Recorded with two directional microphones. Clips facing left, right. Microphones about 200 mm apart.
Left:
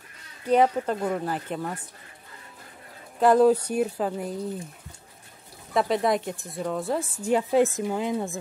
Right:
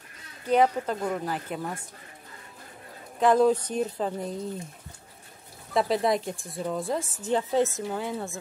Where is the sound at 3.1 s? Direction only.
5° left (ahead or behind).